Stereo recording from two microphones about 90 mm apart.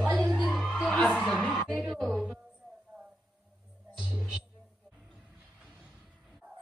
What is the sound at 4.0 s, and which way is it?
Music, 5° right (ahead or behind).